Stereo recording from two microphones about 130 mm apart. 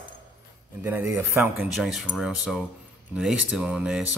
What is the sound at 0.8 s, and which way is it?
Speech, 15° right (ahead or behind).